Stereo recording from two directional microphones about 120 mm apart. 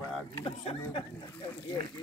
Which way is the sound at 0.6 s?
45° left (ahead or behind).